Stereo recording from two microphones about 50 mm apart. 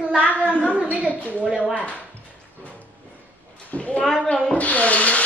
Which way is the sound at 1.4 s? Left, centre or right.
Centre.